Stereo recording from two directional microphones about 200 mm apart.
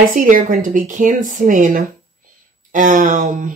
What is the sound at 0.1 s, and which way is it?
Speech, 40° right (ahead or behind).